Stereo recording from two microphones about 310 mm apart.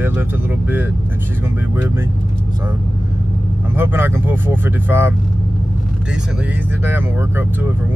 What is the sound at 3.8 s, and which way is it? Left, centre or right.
Speech, centre.